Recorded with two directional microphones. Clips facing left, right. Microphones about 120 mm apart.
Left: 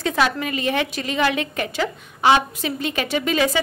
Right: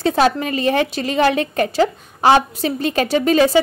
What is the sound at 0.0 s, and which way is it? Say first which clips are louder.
A woman's voice: right 5 dB; 35° right (ahead or behind).